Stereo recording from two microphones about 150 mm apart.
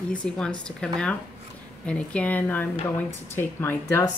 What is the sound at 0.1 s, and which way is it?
Speech, 10° left (ahead or behind).